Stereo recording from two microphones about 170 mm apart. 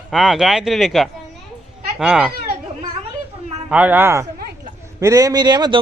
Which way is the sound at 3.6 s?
10° right (ahead or behind).